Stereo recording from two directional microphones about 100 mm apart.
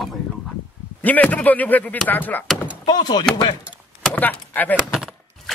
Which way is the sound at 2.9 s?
45° left (ahead or behind).